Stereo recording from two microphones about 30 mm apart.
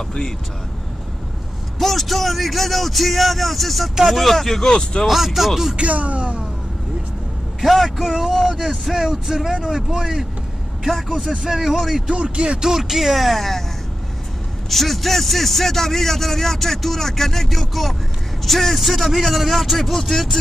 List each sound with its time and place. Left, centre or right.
1.8 s speech: centre
4.6 s speech: left
5.0 s speech: centre
5.8 s speech: right
7.6 s speech: centre
8.0 s speech: centre
8.5 s speech: centre
8.9 s speech: centre
10.9 s speech: centre
11.1 s speech: centre
12.1 s speech: right
12.6 s speech: centre
14.7 s speech: centre
19.8 s speech: centre